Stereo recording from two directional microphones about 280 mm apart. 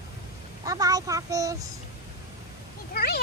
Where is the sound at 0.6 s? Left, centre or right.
Centre.